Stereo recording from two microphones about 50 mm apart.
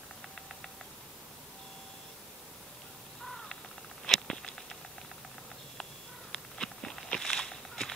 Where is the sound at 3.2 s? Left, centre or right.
Centre.